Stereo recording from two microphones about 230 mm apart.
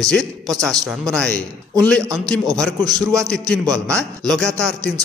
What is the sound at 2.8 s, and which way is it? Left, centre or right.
Speech, centre.